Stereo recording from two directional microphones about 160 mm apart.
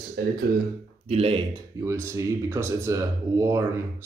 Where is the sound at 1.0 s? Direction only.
40° right (ahead or behind).